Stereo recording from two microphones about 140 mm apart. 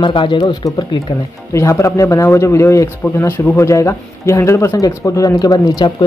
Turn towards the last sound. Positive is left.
turn(degrees=30)  # may be behind; listen again after turning